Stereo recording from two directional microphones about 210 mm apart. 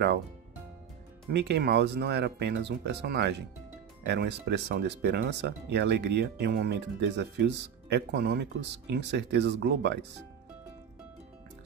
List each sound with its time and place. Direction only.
1.3 s speech: 55° right (ahead or behind)